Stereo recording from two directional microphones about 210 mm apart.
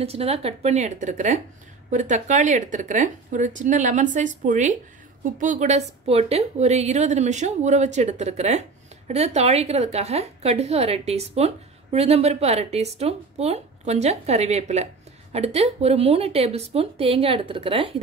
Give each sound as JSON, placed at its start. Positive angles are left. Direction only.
{"t": 0.0, "sound": "a woman's voice", "side_deg": -30}